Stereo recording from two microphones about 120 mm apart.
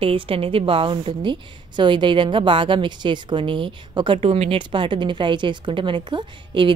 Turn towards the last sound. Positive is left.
turn(degrees=-40)  # may be behind; listen again after turning